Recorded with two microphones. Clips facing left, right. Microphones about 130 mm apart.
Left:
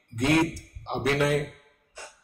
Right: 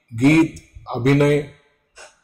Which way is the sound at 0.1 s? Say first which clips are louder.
Right 9 dB; 55° right (ahead or behind).